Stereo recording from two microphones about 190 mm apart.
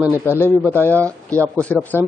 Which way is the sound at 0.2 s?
10° left (ahead or behind).